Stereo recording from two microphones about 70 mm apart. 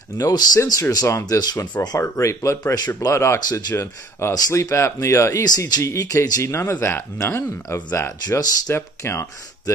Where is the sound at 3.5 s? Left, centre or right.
Left.